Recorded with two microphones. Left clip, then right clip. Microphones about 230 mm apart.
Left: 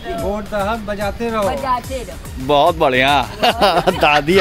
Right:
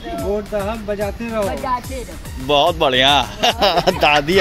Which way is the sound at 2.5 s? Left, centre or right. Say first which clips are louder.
Left 2 dB; centre.